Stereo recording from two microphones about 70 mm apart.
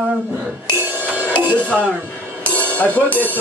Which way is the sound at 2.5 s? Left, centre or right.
Left.